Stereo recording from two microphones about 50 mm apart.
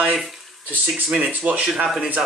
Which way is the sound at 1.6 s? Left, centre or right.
Centre.